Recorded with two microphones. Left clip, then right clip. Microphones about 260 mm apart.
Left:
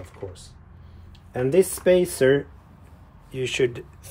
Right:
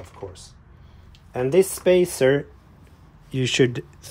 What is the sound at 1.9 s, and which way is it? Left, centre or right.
Speech, centre.